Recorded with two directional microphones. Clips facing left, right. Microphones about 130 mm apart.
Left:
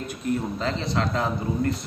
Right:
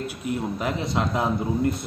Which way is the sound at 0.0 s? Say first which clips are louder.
Left 1 dB; 10° right (ahead or behind).